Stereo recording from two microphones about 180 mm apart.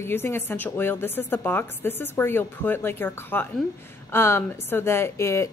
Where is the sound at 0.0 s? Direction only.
15° left (ahead or behind).